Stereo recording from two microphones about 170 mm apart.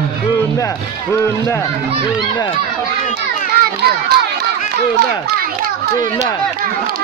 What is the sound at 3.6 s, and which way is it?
Crowd, 70° right (ahead or behind).